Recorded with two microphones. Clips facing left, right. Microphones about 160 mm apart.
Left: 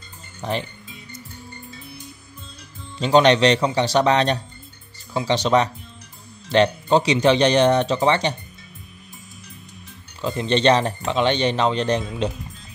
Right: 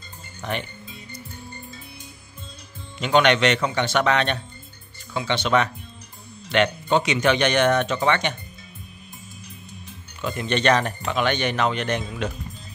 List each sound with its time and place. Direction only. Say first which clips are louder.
0.4 s speech: left 3 dB; 30° left (ahead or behind)
3.0 s speech: left 3 dB; 30° left (ahead or behind)
10.2 s speech: left 3 dB; 30° left (ahead or behind)